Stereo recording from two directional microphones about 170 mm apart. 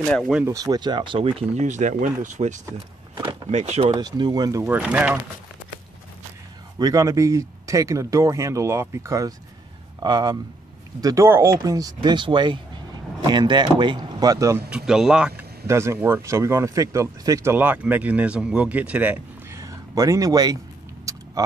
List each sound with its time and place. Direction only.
0.1 s speech: 5° right (ahead or behind)
0.5 s speech: 20° right (ahead or behind)
1.4 s speech: 45° right (ahead or behind)
3.2 s power windows: 25° right (ahead or behind)
3.5 s speech: 40° right (ahead or behind)
3.9 s speech: 20° right (ahead or behind)
6.8 s speech: 20° right (ahead or behind)
14.9 s speech: 5° right (ahead or behind)
15.6 s speech: 15° right (ahead or behind)
19.6 s a sound: 20° right (ahead or behind)
21.1 s vehicle: 20° right (ahead or behind)